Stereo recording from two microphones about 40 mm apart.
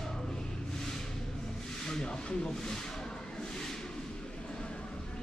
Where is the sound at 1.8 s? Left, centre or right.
Centre.